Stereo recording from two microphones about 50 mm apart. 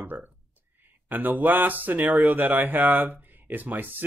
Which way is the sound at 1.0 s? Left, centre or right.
Right.